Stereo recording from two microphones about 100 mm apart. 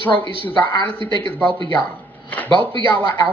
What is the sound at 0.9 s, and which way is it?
Speech, 55° right (ahead or behind).